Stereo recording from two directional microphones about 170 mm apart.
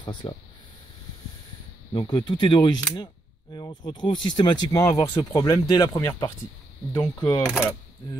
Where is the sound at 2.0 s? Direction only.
25° left (ahead or behind).